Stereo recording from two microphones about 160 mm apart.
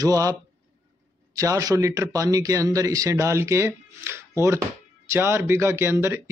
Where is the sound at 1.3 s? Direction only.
20° right (ahead or behind).